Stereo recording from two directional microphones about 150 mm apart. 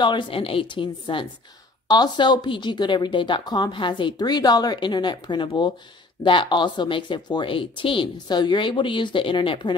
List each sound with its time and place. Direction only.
0.0 s speech: 30° left (ahead or behind)